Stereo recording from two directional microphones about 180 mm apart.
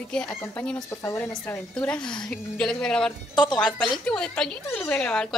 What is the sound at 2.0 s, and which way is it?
Speech, 25° left (ahead or behind).